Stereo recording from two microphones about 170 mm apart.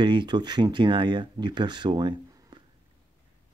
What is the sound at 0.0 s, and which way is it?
Speech, 25° right (ahead or behind).